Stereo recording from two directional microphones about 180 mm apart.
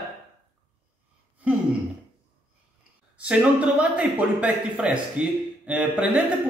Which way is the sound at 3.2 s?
5° right (ahead or behind).